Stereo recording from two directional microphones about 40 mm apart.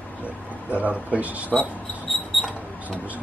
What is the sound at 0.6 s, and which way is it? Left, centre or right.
Speech, right.